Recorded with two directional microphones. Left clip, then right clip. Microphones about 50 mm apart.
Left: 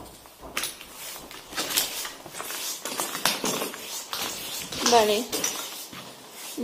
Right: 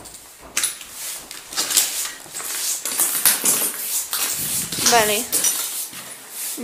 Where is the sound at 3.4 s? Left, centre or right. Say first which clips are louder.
Right 4 dB; centre.